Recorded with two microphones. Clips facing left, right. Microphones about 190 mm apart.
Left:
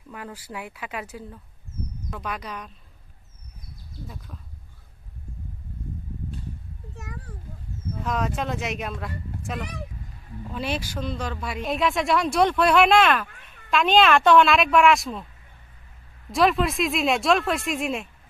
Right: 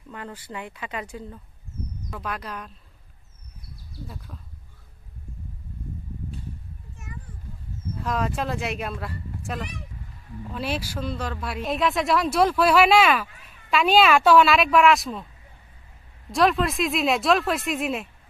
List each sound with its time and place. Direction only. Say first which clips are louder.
0.1 s speech: even; 10° left (ahead or behind)
4.3 s speech: even; centre (ahead or behind)
7.0 s a sound: left 3 dB; 70° left (ahead or behind)
8.0 s speech: even; centre (ahead or behind)
16.3 s speech: even; centre (ahead or behind)